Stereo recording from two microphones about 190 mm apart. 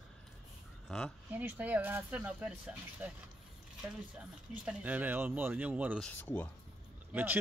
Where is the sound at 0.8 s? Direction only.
Centre (ahead or behind).